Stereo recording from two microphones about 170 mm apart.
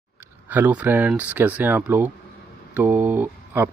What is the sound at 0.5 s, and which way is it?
Speech, 10° right (ahead or behind).